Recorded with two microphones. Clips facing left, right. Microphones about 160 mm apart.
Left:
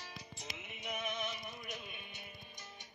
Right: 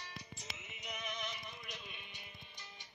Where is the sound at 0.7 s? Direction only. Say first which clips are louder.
Left 5 dB; 55° left (ahead or behind).